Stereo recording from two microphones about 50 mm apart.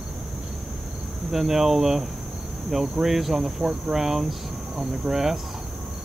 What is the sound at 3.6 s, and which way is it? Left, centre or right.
Cricket, centre.